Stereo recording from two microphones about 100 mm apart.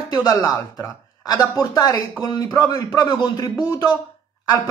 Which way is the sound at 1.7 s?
40° left (ahead or behind).